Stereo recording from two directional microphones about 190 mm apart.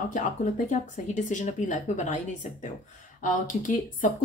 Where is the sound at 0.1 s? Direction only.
40° left (ahead or behind).